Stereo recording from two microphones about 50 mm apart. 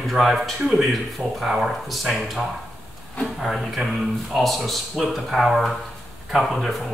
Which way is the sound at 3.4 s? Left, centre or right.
Centre.